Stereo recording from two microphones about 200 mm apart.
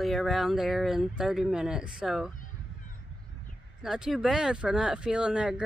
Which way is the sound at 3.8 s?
Centre (ahead or behind).